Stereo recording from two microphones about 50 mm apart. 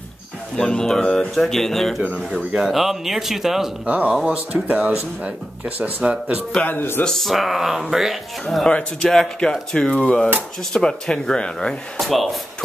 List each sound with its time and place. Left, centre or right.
0.6 s speech: centre
2.7 s speech: centre
3.8 s speech: right
4.1 s speech: centre
4.6 s speech: right
6.6 s speech: left
7.1 s speech: centre
8.6 s speech: centre
12.0 s speech: centre